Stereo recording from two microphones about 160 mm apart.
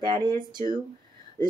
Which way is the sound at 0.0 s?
30° right (ahead or behind).